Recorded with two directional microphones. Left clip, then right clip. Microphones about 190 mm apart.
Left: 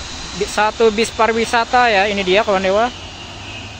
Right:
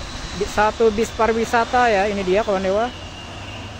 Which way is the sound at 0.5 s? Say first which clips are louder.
Left 3 dB; 5° left (ahead or behind).